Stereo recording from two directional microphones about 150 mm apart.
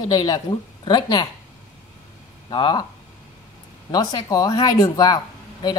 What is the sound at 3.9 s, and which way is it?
Speech, 25° left (ahead or behind).